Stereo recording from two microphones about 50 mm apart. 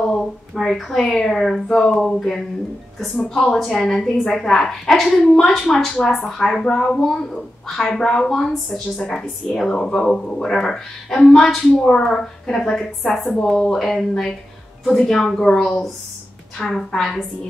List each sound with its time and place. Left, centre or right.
0.2 s a woman's voice: centre
5.9 s a woman's voice: left
6.3 s a woman's voice: centre